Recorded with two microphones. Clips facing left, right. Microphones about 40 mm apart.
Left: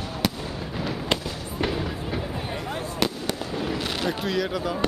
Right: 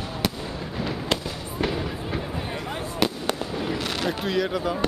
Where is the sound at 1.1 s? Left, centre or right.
Centre.